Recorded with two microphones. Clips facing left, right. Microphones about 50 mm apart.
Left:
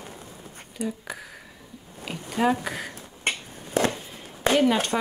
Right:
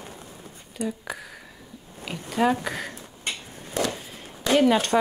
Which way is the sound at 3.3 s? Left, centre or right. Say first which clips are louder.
Left 4 dB; left.